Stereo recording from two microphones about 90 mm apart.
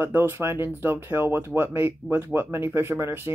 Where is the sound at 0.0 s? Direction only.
25° right (ahead or behind).